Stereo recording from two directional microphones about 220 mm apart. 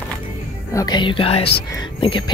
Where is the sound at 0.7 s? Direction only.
20° left (ahead or behind).